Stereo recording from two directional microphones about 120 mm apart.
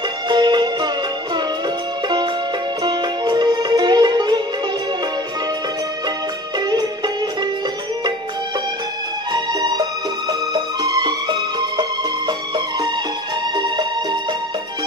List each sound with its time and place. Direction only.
0.3 s music: 40° right (ahead or behind)
2.8 s music: 40° right (ahead or behind)
9.3 s music: 35° right (ahead or behind)